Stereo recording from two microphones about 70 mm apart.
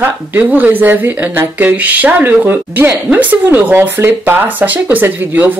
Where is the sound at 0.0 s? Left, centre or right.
Right.